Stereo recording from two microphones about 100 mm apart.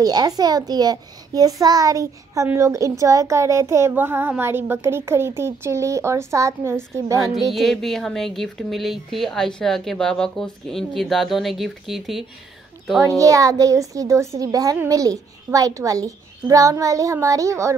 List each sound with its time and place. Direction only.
0.0 s a child's voice: 40° right (ahead or behind)
7.5 s a woman's voice: centre (ahead or behind)
13.2 s a child's voice: 35° right (ahead or behind)